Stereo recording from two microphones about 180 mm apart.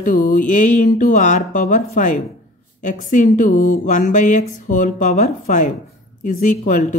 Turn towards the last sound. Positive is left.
turn(degrees=45)  # may be behind; listen again after turning